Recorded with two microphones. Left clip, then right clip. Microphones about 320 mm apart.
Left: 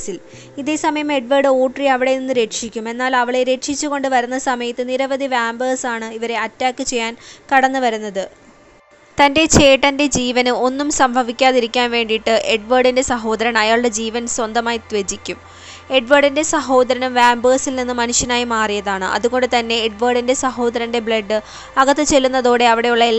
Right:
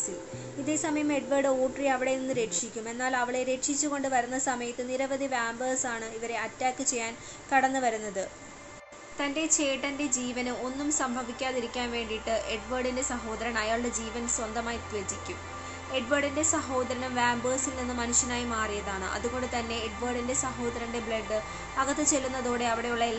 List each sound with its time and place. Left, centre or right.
0.7 s a woman's voice: left